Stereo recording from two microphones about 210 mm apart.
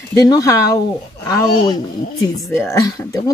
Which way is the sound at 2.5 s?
10° left (ahead or behind).